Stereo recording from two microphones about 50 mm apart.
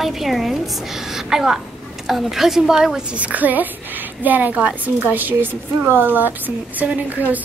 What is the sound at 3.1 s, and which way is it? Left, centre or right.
A woman's voice, right.